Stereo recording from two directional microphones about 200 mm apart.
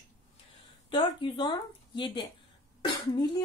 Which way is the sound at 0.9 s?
25° left (ahead or behind).